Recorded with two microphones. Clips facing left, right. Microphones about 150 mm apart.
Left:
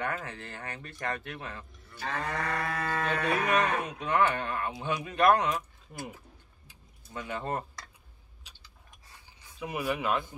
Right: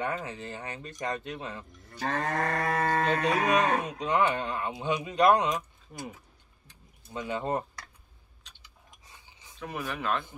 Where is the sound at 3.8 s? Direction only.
20° right (ahead or behind).